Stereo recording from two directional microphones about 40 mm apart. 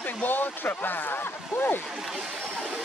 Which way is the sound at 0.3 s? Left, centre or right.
Left.